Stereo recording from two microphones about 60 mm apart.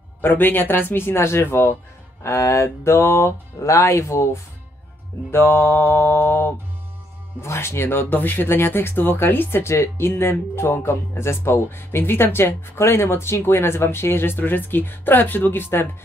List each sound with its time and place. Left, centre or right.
0.2 s speech: left
2.2 s music: left
5.3 s speech: left